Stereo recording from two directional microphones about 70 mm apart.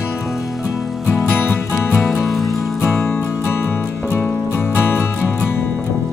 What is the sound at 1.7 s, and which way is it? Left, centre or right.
Music, left.